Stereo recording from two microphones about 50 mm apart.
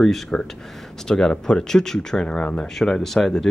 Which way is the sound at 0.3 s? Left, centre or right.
Centre.